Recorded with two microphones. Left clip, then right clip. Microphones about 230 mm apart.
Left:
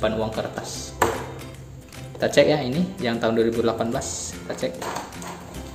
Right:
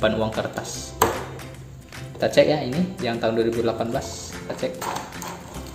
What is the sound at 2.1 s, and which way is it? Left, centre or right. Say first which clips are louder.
Speech: even; centre.